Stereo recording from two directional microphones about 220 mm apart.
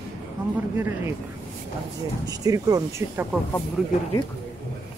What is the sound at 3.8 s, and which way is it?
Speech, 5° right (ahead or behind).